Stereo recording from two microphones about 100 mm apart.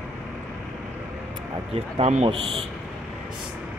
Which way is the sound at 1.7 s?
75° right (ahead or behind).